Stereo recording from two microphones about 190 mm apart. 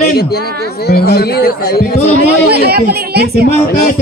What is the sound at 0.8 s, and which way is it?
A man's voice, 55° left (ahead or behind).